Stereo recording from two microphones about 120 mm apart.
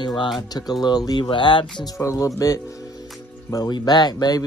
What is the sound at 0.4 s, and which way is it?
Speech, 35° left (ahead or behind).